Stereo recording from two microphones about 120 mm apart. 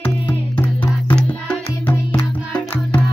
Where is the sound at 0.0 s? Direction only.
15° left (ahead or behind).